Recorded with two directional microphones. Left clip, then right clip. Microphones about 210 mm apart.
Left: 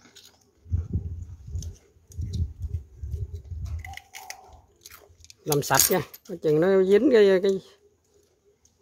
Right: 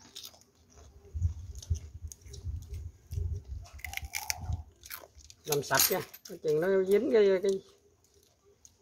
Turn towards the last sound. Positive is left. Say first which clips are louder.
# left 7 dB
turn(degrees=50)  # may be behind; listen again after turning